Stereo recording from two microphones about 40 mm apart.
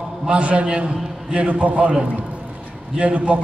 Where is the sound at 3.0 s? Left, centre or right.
Right.